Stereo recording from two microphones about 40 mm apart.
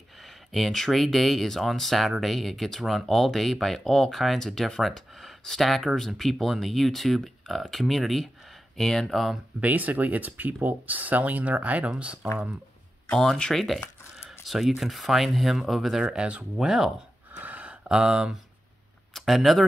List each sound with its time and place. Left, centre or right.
0.5 s speech: centre
9.6 s speech: right
12.0 s speech: right
13.5 s speech: centre
14.4 s speech: centre
16.0 s speech: right
16.5 s speech: centre
17.3 s a sound: right
17.8 s speech: right
19.1 s speech: centre